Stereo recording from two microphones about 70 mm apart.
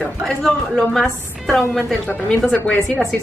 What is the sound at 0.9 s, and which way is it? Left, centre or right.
Speech, centre.